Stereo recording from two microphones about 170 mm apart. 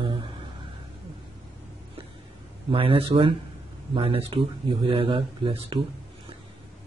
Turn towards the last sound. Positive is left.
turn(degrees=-30)  # may be behind; listen again after turning